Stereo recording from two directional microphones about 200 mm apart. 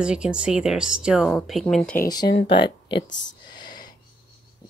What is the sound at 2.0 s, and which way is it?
Speech, 20° left (ahead or behind).